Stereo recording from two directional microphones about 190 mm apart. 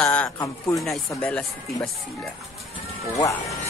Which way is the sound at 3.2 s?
15° left (ahead or behind).